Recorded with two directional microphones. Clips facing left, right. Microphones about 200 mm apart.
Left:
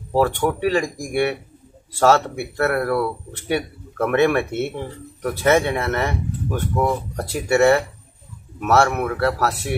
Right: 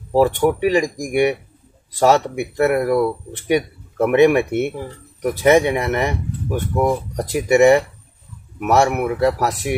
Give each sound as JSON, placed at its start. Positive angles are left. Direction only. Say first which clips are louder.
{"t": 0.1, "sound": "speech", "louder": "right 4 dB", "side_deg": -15}